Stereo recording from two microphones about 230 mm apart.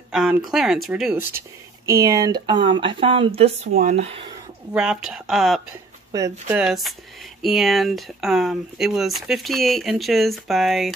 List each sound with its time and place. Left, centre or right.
0.1 s a sound: centre
0.5 s speech: centre
1.9 s speech: centre
4.7 s speech: centre